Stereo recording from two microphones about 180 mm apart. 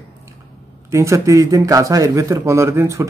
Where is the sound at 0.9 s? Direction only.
15° right (ahead or behind).